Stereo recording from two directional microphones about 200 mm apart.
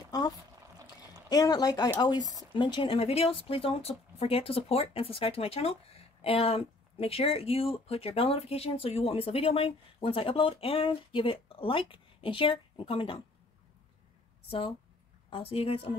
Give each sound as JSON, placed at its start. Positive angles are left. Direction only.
{"t": 1.3, "sound": "speech", "side_deg": 20}
{"t": 15.2, "sound": "speech", "side_deg": 25}